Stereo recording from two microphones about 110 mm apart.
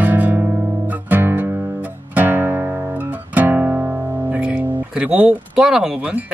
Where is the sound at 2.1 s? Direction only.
15° right (ahead or behind).